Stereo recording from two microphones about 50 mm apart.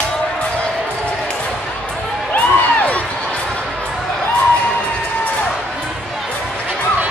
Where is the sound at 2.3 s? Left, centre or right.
Left.